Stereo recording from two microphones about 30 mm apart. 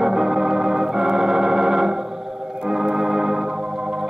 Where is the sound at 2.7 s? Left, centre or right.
Centre.